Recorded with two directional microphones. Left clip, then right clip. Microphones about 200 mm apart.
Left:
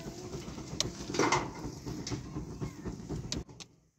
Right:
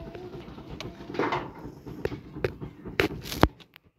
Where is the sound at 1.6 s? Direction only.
5° left (ahead or behind).